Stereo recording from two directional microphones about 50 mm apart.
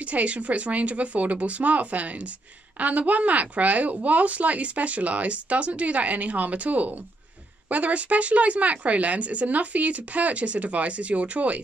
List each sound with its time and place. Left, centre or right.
0.0 s speech: right